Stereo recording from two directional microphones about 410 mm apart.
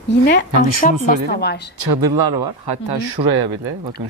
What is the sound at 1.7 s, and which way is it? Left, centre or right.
Speech, right.